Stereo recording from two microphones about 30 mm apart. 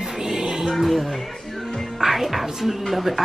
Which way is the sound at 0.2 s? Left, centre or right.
Centre.